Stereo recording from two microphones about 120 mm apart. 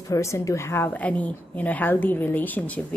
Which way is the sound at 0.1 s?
25° left (ahead or behind).